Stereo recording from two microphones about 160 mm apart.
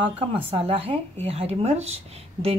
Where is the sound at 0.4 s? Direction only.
35° right (ahead or behind).